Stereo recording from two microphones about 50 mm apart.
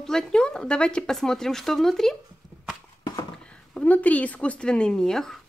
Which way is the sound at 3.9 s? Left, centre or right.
Left.